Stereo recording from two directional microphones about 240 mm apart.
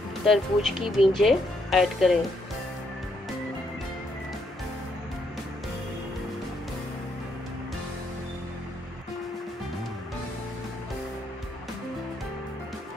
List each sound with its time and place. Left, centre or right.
0.3 s speech: centre